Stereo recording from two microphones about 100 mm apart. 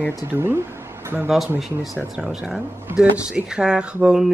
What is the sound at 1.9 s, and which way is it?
Speech, 10° right (ahead or behind).